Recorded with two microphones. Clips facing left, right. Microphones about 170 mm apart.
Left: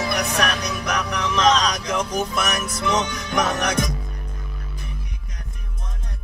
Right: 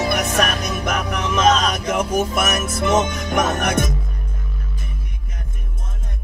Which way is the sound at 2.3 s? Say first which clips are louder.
Right 4 dB; 50° right (ahead or behind).